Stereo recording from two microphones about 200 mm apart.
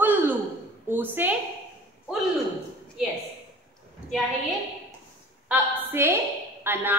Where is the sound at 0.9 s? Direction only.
10° right (ahead or behind).